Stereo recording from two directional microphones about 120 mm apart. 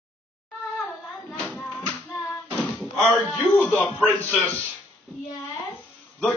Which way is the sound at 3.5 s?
15° left (ahead or behind).